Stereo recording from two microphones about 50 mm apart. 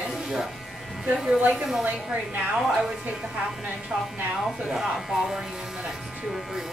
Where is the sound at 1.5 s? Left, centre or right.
Centre.